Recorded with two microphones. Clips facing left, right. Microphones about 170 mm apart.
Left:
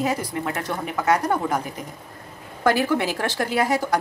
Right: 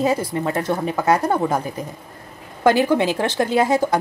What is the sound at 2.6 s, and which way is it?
A woman's voice, 20° right (ahead or behind).